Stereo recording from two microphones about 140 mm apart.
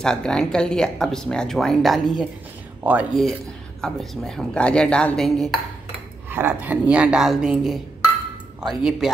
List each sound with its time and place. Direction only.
0.0 s speech: 5° left (ahead or behind)
2.8 s speech: 10° right (ahead or behind)
3.8 s speech: 5° left (ahead or behind)
6.3 s speech: 15° right (ahead or behind)